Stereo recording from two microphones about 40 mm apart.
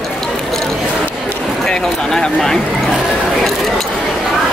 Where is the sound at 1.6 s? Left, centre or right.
Centre.